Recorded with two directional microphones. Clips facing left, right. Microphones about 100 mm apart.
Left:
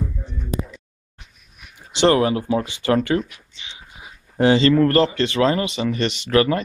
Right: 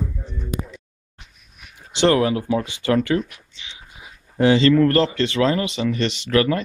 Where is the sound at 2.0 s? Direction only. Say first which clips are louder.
Left 1 dB; 25° left (ahead or behind).